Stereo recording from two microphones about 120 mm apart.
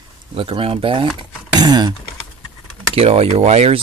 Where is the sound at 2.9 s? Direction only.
55° right (ahead or behind).